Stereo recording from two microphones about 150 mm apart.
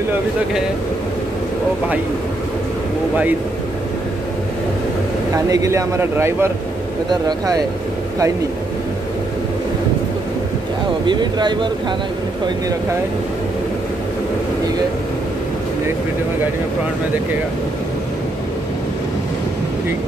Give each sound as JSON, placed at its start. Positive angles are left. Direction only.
{"t": 5.3, "sound": "speech", "side_deg": -25}
{"t": 7.1, "sound": "speech", "side_deg": -25}
{"t": 11.1, "sound": "speech", "side_deg": -30}